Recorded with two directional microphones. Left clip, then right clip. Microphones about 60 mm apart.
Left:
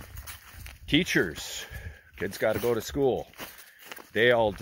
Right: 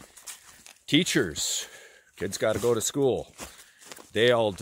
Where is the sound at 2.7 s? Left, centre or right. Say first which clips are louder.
Right 2 dB; right.